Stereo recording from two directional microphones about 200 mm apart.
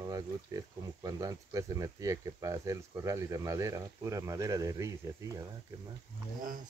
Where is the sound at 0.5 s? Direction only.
15° right (ahead or behind).